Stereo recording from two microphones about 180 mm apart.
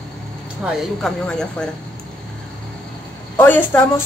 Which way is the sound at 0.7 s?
5° left (ahead or behind).